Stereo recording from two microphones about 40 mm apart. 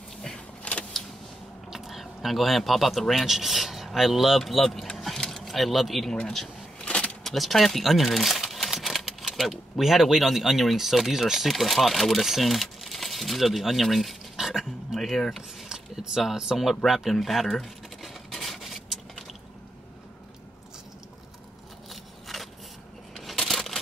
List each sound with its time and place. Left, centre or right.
0.6 s vehicle: left
1.7 s speech: centre
4.9 s a sound: centre
5.4 s speech: centre
6.8 s keys jangling: left
7.2 s crumpling: centre
9.5 s speech: centre
14.3 s dog: centre
15.0 s speech: centre
15.7 s a sound: centre
16.5 s a sound: centre
22.3 s a sound: centre